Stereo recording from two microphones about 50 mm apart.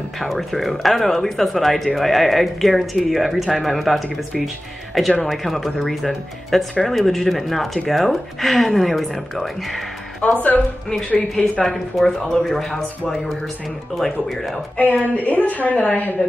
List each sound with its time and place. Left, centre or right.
0.2 s speech: centre
5.2 s speech: centre
10.2 s a woman's voice: left
11.6 s speech: centre
13.9 s speech: centre
14.8 s a woman's voice: left